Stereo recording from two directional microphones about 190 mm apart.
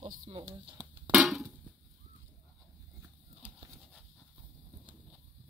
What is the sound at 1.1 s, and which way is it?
Drum, 5° right (ahead or behind).